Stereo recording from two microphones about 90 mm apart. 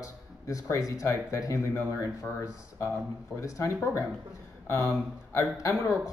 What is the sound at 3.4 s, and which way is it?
Speech, 35° left (ahead or behind).